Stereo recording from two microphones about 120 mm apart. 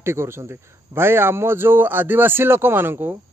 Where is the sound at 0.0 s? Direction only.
20° right (ahead or behind).